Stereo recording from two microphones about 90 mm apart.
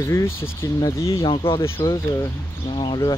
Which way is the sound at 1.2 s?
65° left (ahead or behind).